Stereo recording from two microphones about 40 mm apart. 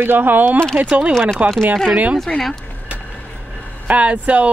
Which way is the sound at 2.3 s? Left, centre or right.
Centre.